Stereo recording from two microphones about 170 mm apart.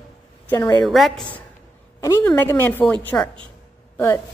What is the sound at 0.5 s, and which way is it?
Speech, 20° left (ahead or behind).